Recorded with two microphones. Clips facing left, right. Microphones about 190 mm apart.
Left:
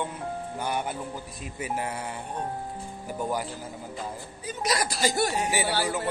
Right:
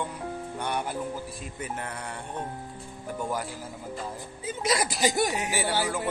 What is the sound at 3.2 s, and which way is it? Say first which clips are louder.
Speech: left 2 dB; centre (ahead or behind).